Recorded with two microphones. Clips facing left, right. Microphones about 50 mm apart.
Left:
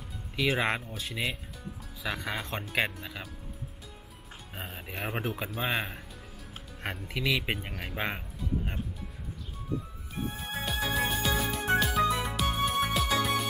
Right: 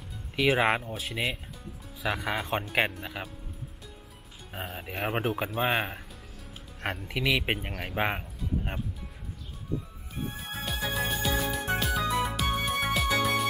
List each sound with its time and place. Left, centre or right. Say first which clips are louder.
0.6 s speech: right 4 dB; centre
4.6 s speech: right 4 dB; centre
7.4 s speech: right 3 dB; centre
10.3 s music: left 1 dB; centre